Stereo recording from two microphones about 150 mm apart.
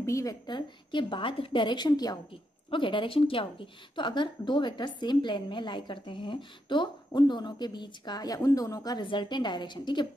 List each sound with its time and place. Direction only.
0.0 s a woman's voice: 20° left (ahead or behind)